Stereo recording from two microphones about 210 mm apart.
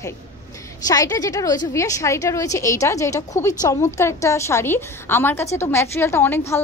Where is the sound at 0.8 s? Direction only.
15° left (ahead or behind).